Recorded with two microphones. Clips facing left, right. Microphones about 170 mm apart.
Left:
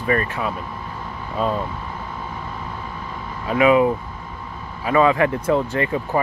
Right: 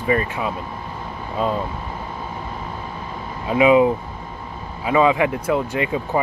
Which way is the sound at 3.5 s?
15° right (ahead or behind).